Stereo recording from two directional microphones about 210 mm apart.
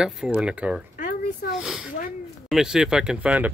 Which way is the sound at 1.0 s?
50° left (ahead or behind).